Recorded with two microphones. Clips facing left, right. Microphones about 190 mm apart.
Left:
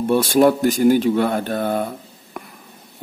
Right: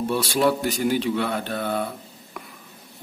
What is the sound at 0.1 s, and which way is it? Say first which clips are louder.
Speech: left 8 dB; 50° left (ahead or behind).